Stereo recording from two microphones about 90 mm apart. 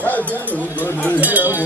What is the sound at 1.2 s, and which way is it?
Music, 20° right (ahead or behind).